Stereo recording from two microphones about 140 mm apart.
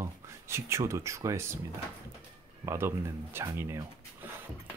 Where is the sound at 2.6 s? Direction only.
20° right (ahead or behind).